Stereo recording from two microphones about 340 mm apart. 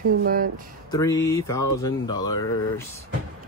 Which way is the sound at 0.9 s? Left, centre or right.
Centre.